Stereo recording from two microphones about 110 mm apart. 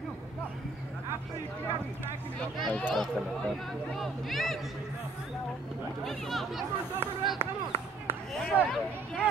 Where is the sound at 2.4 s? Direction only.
10° left (ahead or behind).